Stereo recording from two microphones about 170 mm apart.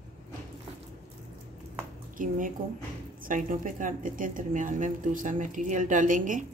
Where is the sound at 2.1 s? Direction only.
50° right (ahead or behind).